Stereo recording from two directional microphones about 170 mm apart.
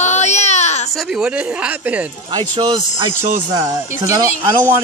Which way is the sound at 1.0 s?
5° right (ahead or behind).